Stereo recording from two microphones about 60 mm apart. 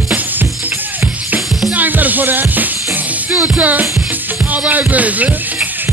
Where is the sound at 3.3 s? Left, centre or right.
Centre.